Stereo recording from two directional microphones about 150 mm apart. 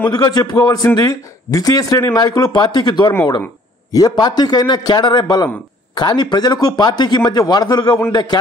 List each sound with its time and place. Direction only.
0.0 s speech: 25° left (ahead or behind)